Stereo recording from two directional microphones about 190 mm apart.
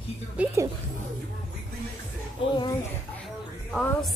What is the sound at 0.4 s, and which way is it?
Speech, 5° right (ahead or behind).